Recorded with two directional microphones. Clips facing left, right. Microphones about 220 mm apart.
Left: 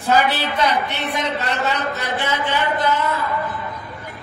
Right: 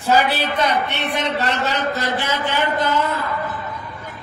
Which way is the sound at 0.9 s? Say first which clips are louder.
Right 1 dB; 70° right (ahead or behind).